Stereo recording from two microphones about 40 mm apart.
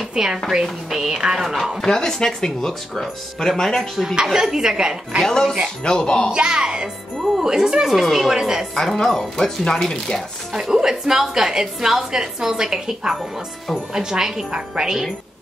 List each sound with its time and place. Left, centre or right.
0.1 s a woman's voice: centre
1.1 s a woman's voice: centre
1.8 s speech: centre
4.1 s a woman's voice: centre
5.2 s speech: centre
6.3 s a woman's voice: centre
8.7 s speech: centre
10.5 s a woman's voice: centre